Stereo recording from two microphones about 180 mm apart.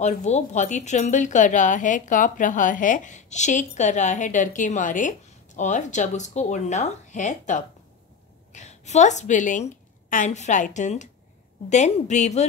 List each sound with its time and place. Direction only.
0.0 s a woman's voice: 40° left (ahead or behind)